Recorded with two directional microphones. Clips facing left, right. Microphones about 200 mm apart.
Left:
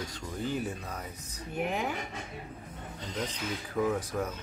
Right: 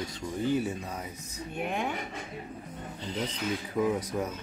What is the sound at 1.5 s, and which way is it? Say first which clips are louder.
Speech: even; 5° left (ahead or behind).